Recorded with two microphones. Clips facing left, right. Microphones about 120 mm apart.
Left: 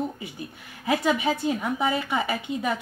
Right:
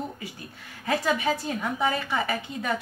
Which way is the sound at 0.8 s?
15° left (ahead or behind).